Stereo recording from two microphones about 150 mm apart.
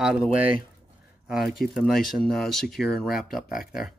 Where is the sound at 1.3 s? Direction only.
Centre (ahead or behind).